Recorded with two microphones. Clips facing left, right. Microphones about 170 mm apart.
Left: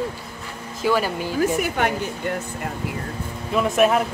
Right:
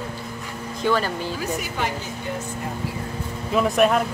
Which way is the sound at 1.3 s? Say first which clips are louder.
Left 6 dB; 55° left (ahead or behind).